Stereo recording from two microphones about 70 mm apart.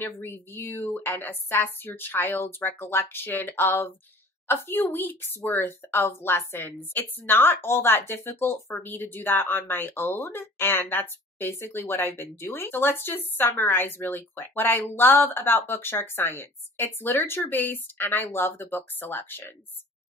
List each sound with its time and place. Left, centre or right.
0.0 s speech: left